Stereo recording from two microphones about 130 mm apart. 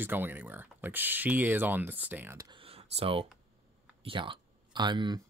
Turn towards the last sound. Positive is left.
turn(degrees=-35)  # may be behind; listen again after turning